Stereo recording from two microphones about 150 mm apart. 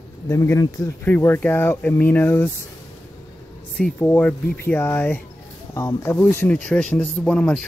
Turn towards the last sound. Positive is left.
turn(degrees=10)  # may be behind; listen again after turning